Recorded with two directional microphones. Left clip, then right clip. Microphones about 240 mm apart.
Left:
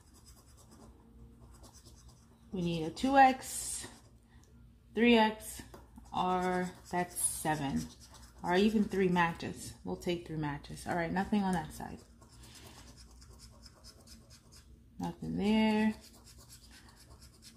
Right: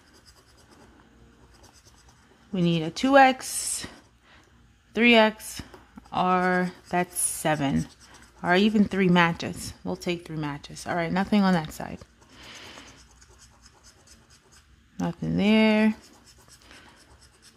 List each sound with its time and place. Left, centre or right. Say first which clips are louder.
2.5 s a woman's voice: right 10 dB; right
4.9 s speech: right 9 dB; right
5.6 s a sound: right 9 dB; right
6.1 s a woman's voice: right 9 dB; right
15.0 s a woman's voice: right 10 dB; right